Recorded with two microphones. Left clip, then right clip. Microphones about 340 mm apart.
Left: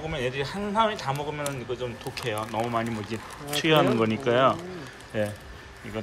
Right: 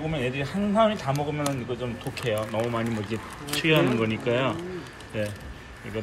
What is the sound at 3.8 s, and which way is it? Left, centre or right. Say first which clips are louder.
Speech: left 2 dB; left.